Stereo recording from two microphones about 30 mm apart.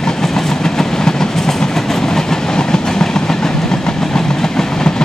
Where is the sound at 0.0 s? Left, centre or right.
Centre.